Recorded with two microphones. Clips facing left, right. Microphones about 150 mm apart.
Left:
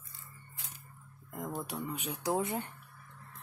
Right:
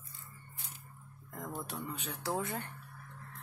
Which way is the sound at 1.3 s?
10° left (ahead or behind).